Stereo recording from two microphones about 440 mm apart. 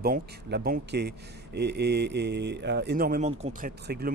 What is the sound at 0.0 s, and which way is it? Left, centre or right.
Speech, right.